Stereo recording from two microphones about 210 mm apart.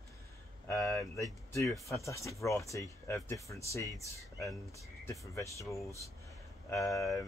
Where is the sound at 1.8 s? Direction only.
15° left (ahead or behind).